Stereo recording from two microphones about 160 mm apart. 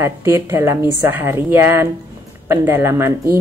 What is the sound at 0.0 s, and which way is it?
Speech, 15° right (ahead or behind).